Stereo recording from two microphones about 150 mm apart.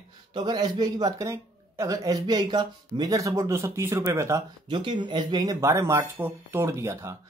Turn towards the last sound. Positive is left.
turn(degrees=-20)  # may be behind; listen again after turning